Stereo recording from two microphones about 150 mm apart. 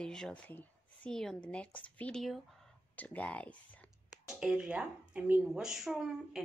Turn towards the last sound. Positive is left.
turn(degrees=-5)  # may be behind; listen again after turning